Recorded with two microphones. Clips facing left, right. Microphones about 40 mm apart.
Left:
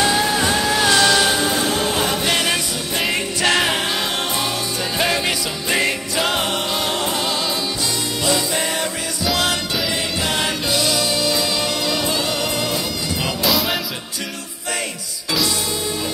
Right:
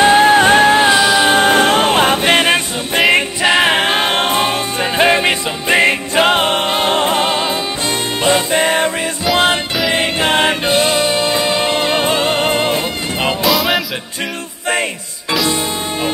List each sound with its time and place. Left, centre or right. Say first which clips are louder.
0.0 s music: right 9 dB; right
0.8 s music: right 4 dB; centre
1.3 s music: right 9 dB; right